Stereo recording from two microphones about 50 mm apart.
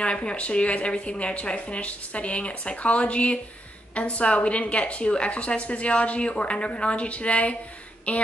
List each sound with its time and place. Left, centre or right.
0.0 s a woman's voice: left